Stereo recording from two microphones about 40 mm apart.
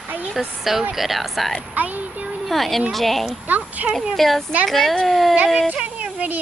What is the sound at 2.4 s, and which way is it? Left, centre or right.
Speech, centre.